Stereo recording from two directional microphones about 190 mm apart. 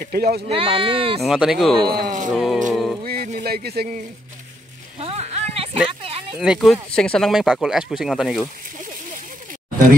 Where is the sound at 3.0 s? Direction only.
50° right (ahead or behind).